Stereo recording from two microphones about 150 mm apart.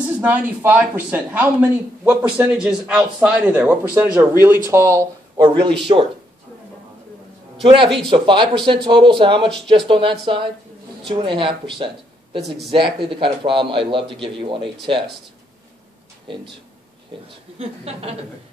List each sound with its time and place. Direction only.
0.2 s speech: 10° right (ahead or behind)
5.6 s a man's voice: 35° right (ahead or behind)
7.6 s a man's voice: 35° right (ahead or behind)
17.6 s a man's voice: 40° right (ahead or behind)